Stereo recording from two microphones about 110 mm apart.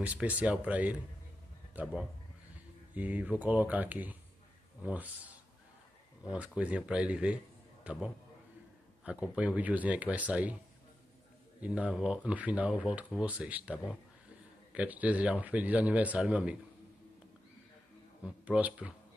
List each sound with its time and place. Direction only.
0.0 s a man's voice: 15° right (ahead or behind)
11.6 s a man's voice: 10° right (ahead or behind)
18.2 s a man's voice: 10° right (ahead or behind)